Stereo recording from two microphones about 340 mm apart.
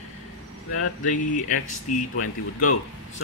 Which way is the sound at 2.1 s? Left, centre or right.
Left.